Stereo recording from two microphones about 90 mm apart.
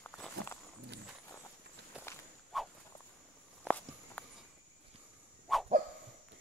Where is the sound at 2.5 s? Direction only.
Centre (ahead or behind).